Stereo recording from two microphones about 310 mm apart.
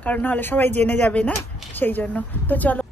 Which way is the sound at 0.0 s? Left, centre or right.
Centre.